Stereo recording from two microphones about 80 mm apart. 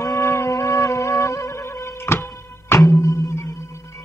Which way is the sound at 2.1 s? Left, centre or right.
Left.